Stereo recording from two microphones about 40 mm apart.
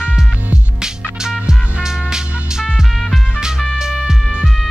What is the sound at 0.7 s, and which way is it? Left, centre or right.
Music, centre.